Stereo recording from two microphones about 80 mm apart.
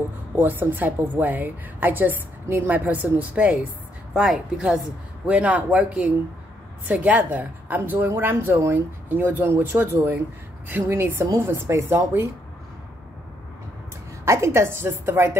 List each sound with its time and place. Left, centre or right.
0.4 s speech: right
4.1 s a woman's voice: centre; by 12.3 s right
14.2 s a woman's voice: right